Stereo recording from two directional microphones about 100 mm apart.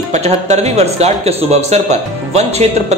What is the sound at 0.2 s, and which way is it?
Speech, 90° right.